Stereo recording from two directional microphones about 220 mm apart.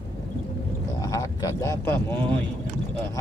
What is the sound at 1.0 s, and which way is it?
Speech, 15° left (ahead or behind).